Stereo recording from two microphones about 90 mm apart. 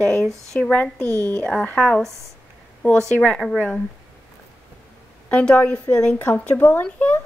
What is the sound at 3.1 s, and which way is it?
Speech, 10° left (ahead or behind).